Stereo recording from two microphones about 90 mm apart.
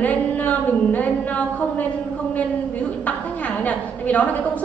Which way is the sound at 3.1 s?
15° left (ahead or behind).